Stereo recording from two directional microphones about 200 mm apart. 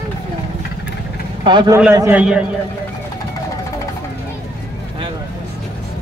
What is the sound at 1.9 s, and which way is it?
Speech, 10° right (ahead or behind).